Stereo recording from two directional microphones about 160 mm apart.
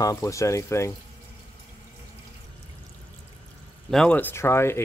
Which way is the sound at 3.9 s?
5° left (ahead or behind).